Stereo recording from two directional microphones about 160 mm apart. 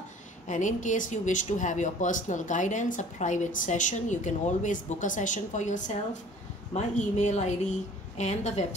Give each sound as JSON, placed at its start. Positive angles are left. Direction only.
{"t": 0.5, "sound": "speech", "side_deg": 50}